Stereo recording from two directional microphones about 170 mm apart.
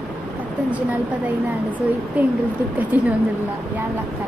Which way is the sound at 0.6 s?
10° right (ahead or behind).